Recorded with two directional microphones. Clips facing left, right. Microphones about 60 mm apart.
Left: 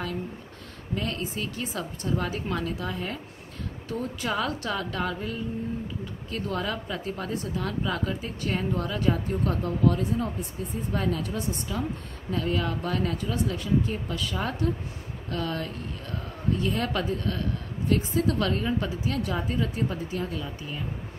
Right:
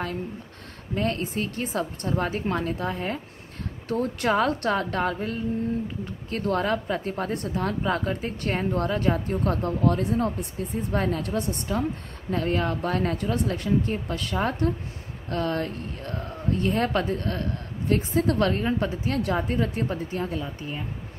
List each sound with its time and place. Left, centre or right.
0.9 s speech: right
3.9 s a woman's voice: right
11.0 s speech: right
11.2 s a woman's voice: right
12.3 s a woman's voice: right